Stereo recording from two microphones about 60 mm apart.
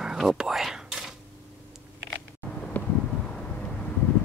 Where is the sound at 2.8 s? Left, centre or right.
Left.